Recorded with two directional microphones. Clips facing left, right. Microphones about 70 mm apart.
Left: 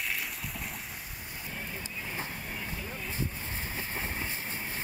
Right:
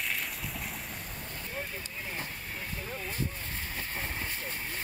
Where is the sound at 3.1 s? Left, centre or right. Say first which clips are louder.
Even; centre.